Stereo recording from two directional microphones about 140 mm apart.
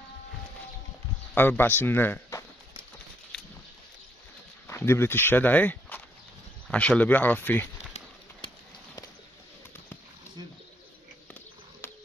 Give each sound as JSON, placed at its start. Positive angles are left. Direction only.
{"t": 1.3, "sound": "speech", "side_deg": 15}
{"t": 4.6, "sound": "speech", "side_deg": 20}
{"t": 8.4, "sound": "clip-clop", "side_deg": 40}
{"t": 11.8, "sound": "a sound", "side_deg": 15}